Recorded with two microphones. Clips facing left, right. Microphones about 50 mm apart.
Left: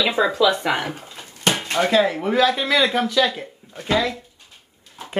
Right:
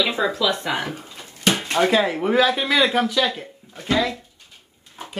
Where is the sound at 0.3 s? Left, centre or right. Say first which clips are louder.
Left 4 dB; left.